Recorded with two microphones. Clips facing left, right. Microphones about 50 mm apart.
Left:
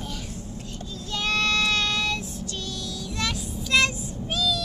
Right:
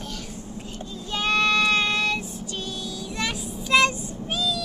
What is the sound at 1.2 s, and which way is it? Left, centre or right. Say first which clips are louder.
Child singing: right 3 dB; centre.